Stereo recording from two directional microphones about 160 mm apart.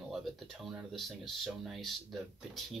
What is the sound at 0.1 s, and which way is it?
Speech, centre (ahead or behind).